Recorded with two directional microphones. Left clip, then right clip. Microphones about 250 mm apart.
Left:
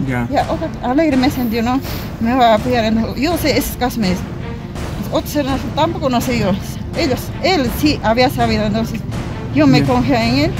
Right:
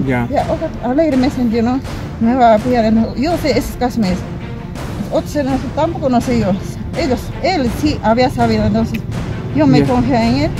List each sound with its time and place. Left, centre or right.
0.8 s speech: centre